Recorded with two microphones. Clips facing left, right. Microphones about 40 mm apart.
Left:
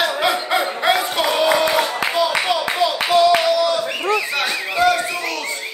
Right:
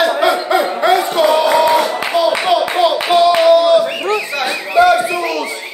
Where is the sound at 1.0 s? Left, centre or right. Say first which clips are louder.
Right 6 dB; centre.